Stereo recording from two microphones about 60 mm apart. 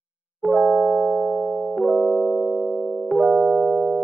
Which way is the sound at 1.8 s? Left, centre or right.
Centre.